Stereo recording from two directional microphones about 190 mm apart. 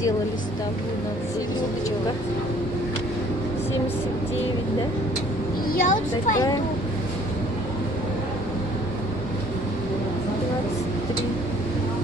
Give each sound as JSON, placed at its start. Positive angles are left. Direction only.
{"t": 5.7, "sound": "vehicle", "side_deg": 50}